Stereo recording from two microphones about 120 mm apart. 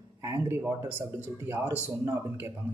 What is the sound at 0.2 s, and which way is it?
Speech, 25° right (ahead or behind).